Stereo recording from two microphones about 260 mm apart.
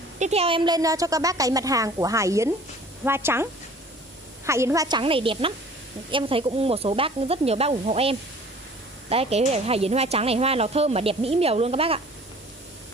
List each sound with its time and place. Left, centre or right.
0.2 s a woman's voice: right
4.5 s a woman's voice: centre